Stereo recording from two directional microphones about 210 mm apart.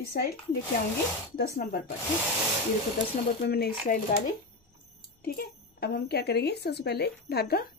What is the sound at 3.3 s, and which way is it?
Speech, 50° left (ahead or behind).